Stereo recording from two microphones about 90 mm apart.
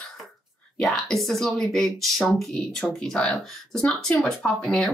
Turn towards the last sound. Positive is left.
turn(degrees=5)  # may be behind; listen again after turning